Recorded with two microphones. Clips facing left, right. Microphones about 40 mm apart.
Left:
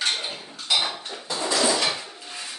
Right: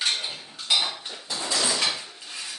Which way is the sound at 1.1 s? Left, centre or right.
Centre.